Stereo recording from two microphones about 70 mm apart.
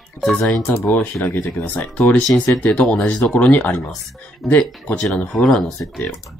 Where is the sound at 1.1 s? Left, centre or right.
Centre.